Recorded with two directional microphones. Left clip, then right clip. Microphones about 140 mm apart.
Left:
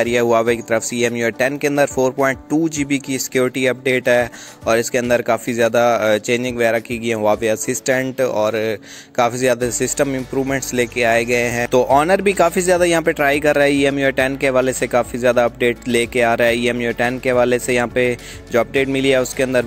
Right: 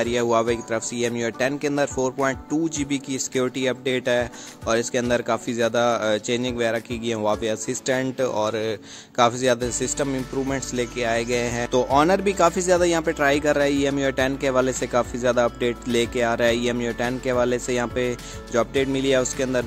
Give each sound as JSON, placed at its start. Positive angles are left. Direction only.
{"t": 0.0, "sound": "speech", "side_deg": 25}
{"t": 11.7, "sound": "speech", "side_deg": 35}